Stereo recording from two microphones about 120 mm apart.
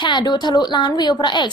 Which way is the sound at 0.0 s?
40° left (ahead or behind).